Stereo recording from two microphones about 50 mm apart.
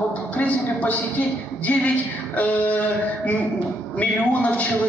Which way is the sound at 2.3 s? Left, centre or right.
Left.